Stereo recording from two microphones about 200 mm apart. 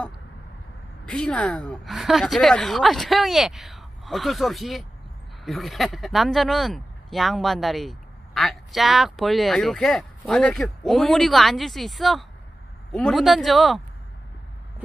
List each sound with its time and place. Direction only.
1.0 s speech: 5° left (ahead or behind)